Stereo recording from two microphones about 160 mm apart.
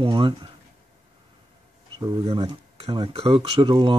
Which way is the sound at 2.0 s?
30° right (ahead or behind).